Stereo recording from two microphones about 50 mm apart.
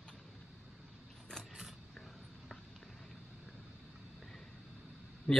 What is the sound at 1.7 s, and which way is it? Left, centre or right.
Vehicle, centre.